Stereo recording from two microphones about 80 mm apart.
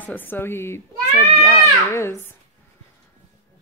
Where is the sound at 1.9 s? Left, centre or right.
Left.